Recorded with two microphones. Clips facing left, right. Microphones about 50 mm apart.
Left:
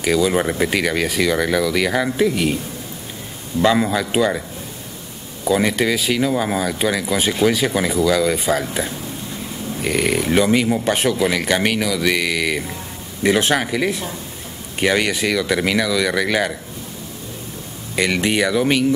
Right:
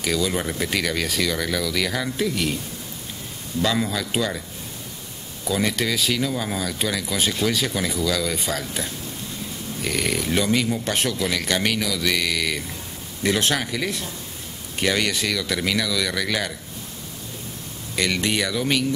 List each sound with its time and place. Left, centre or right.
0.0 s speech: centre
3.6 s speech: left
5.4 s speech: centre
17.9 s speech: centre